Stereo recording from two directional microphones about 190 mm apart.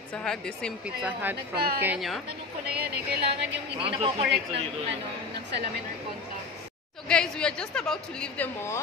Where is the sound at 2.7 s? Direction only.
55° right (ahead or behind).